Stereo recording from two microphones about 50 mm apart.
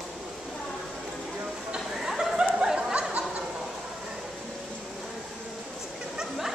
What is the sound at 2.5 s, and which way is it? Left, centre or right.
Snicker, centre.